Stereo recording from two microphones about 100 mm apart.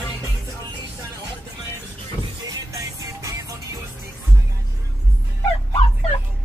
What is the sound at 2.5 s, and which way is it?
Music, 35° right (ahead or behind).